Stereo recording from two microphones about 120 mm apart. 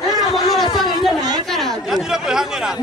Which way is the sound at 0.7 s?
Centre (ahead or behind).